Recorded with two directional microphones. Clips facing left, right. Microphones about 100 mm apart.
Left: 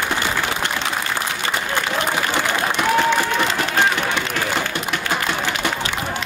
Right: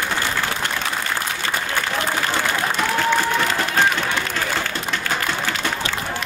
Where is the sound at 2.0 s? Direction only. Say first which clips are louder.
Left 1 dB; 20° left (ahead or behind).